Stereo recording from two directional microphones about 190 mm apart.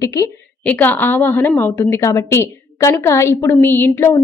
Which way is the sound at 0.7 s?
10° left (ahead or behind).